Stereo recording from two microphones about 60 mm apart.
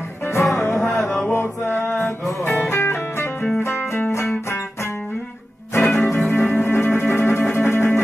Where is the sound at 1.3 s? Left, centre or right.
Left.